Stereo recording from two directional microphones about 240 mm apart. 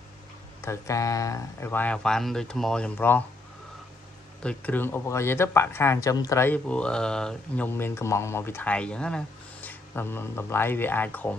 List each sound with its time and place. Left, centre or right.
0.6 s speech: centre
4.4 s speech: centre